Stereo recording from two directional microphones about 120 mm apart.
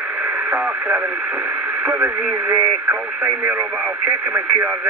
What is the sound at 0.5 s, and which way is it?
Radio, 15° right (ahead or behind).